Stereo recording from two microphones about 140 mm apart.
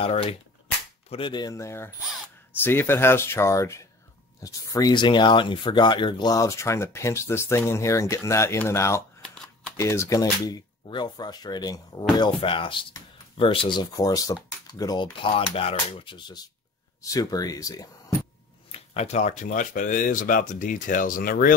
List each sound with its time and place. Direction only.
0.0 s cap gun: 40° left (ahead or behind)
1.1 s speech: 35° left (ahead or behind)
15.3 s speech: 40° left (ahead or behind); by 17.8 s 25° left (ahead or behind)
18.7 s speech: 50° left (ahead or behind); by 21.5 s 90° left